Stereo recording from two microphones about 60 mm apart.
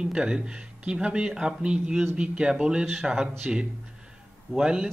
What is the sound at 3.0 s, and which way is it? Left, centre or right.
Speech, centre.